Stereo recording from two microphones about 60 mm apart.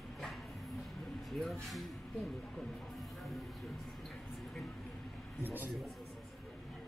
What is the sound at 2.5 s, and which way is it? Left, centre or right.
Music, centre.